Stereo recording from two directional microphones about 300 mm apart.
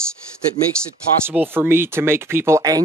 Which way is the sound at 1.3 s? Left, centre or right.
Centre.